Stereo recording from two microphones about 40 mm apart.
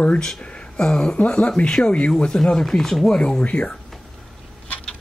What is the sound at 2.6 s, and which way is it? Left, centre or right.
Speech, centre.